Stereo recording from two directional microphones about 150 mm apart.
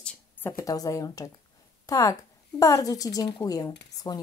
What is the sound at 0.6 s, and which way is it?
A woman's voice, 25° left (ahead or behind).